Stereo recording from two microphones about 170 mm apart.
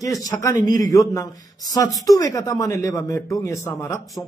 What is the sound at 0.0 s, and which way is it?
A man's voice, 20° left (ahead or behind).